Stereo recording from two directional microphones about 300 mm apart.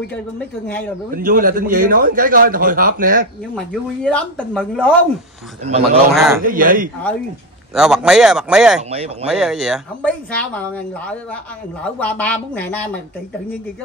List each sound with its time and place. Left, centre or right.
0.7 s a woman's voice: centre
1.1 s a man's voice: right
3.5 s a woman's voice: centre
5.6 s a man's voice: right
6.1 s a woman's voice: centre
6.4 s a man's voice: right
7.7 s a woman's voice: centre
8.9 s a man's voice: centre
9.3 s a woman's voice: centre